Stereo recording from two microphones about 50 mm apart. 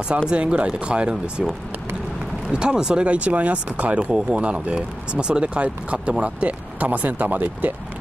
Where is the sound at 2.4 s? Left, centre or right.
Centre; by 7.7 s right.